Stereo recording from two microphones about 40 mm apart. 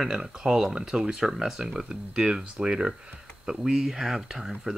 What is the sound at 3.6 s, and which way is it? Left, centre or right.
Speech, centre.